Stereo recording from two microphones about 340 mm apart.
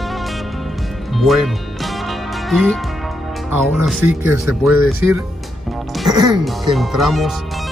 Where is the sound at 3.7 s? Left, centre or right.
Centre.